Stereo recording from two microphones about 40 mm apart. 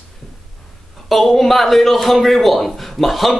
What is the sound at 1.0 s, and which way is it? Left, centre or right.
A man's voice, centre.